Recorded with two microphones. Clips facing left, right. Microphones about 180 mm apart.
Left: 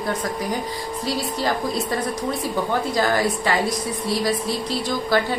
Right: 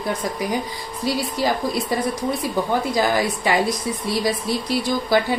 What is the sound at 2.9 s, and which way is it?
Speech, 15° right (ahead or behind).